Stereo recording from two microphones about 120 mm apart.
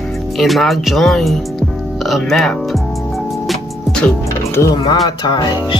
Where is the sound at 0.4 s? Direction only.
Centre (ahead or behind).